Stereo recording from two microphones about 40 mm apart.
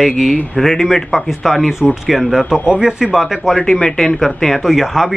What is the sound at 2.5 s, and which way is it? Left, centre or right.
Speech, centre.